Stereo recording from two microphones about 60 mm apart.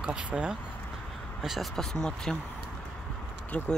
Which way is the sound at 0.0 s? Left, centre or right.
Centre.